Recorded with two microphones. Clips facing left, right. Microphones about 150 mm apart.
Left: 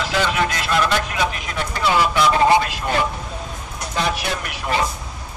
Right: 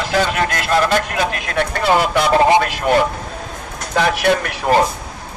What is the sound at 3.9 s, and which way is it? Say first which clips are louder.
Speech: right 8 dB; 70° right (ahead or behind).